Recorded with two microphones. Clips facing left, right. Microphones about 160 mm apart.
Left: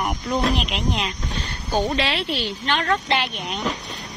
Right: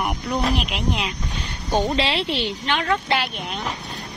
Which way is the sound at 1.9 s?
25° right (ahead or behind).